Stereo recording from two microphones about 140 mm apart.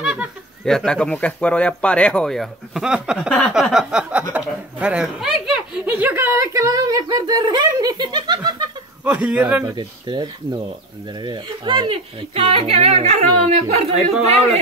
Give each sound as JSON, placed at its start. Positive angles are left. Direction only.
{"t": 0.0, "sound": "a sound", "side_deg": -5}
{"t": 0.7, "sound": "speech", "side_deg": 5}
{"t": 9.0, "sound": "speech", "side_deg": -5}
{"t": 9.8, "sound": "speech", "side_deg": -30}